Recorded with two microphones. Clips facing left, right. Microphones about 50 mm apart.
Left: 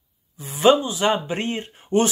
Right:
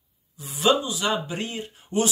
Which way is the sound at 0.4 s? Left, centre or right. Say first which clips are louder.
Left 5 dB; left.